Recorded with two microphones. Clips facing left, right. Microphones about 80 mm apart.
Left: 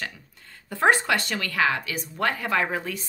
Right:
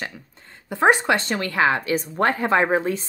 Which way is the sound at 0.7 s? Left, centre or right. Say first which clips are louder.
Right 3 dB; right.